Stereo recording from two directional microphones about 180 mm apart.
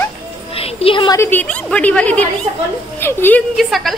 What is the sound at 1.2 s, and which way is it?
A woman's voice, 10° left (ahead or behind).